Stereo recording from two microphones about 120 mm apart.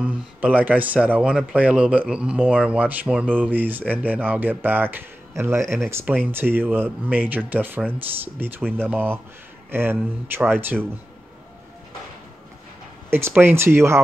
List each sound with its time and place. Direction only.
0.0 s speech: 15° right (ahead or behind)
13.1 s speech: 20° right (ahead or behind)